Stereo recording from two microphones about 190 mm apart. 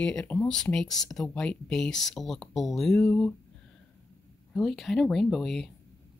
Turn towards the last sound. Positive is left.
turn(degrees=0)  # may be behind; listen again after turning